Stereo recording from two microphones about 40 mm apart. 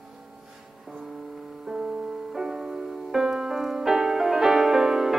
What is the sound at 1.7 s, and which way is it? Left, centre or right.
Music, centre.